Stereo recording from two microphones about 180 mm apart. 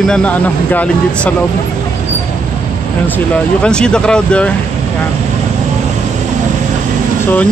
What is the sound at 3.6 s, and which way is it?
Speech, 5° left (ahead or behind).